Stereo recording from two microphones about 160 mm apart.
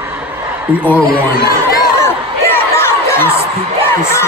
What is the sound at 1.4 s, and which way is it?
Crowd, 75° left (ahead or behind).